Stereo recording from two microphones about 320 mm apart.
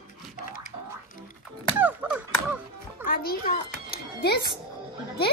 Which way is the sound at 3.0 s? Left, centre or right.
Left.